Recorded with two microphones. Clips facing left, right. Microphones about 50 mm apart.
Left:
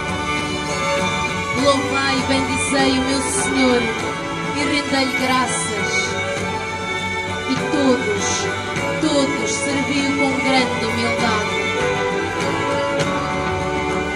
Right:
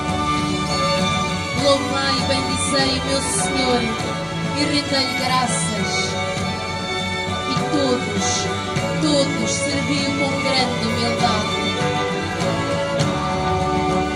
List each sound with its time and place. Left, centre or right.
1.6 s music: left
4.9 s music: left
7.7 s music: left
9.0 s music: left